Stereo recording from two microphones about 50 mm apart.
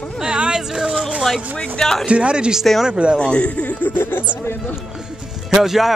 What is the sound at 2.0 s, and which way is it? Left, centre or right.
Speech, right.